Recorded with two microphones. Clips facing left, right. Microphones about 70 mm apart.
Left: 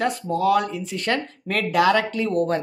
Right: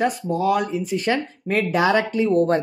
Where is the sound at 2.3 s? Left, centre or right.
Right.